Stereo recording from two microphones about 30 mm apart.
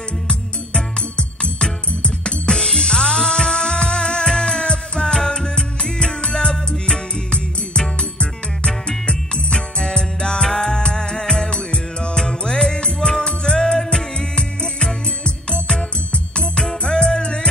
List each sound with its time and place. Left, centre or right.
1.1 s music: left
2.5 s music: left
7.2 s music: left
13.6 s music: centre
13.9 s music: left
16.8 s music: left